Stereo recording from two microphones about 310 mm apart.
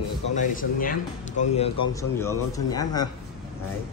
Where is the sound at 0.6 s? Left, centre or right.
Left.